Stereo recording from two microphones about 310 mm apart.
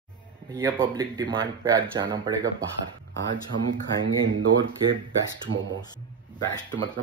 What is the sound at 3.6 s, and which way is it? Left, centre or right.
Speech, right.